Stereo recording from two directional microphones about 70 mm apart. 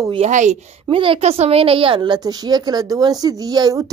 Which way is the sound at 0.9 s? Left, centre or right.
Right.